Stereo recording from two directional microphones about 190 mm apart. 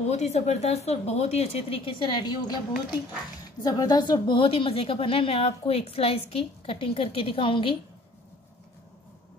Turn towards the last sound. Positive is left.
turn(degrees=25)  # may be behind; listen again after turning